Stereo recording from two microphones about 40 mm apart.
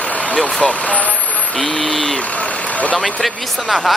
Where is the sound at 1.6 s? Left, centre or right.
Left.